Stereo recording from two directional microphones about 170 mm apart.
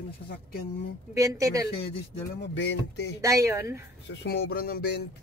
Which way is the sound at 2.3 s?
85° left.